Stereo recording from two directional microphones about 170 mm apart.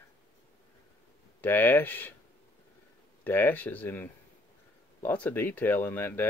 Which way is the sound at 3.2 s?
10° left (ahead or behind).